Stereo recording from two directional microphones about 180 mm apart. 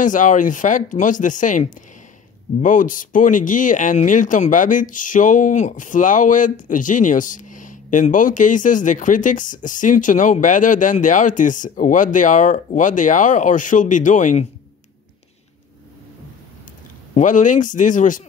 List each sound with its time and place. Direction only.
0.0 s speech: 45° left (ahead or behind)
17.1 s speech: 45° left (ahead or behind)